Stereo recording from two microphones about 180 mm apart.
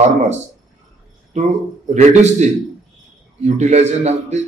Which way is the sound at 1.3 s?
40° right (ahead or behind).